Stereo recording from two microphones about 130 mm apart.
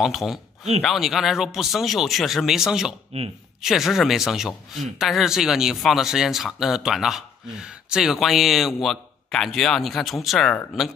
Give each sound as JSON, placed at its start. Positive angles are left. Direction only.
{"t": 0.0, "sound": "speech", "side_deg": 0}
{"t": 3.1, "sound": "speech", "side_deg": -50}
{"t": 3.6, "sound": "speech", "side_deg": 0}